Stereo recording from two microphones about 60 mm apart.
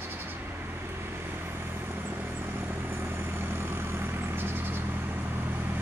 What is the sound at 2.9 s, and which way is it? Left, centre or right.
Vehicle, right.